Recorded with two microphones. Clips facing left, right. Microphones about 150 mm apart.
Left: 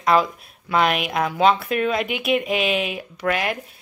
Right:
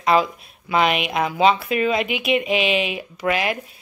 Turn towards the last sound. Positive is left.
turn(degrees=0)  # may be behind; listen again after turning